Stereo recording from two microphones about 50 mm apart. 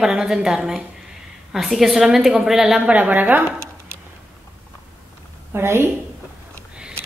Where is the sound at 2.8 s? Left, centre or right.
Right.